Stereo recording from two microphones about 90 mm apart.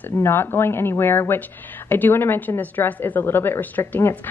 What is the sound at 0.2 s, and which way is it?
Speech, 25° left (ahead or behind).